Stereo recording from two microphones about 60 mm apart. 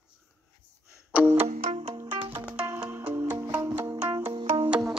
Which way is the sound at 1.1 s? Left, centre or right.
Right.